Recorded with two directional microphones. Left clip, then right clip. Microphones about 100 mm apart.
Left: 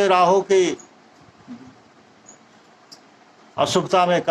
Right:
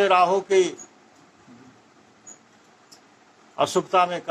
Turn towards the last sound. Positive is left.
turn(degrees=35)  # may be behind; listen again after turning